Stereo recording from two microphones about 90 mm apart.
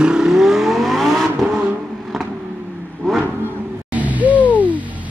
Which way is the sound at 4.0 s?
15° right (ahead or behind).